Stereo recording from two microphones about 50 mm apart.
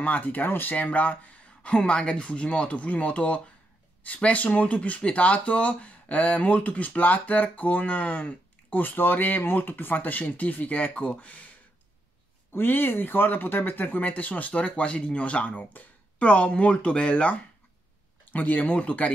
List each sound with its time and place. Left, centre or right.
0.0 s speech: left
1.6 s speech: centre
12.5 s speech: left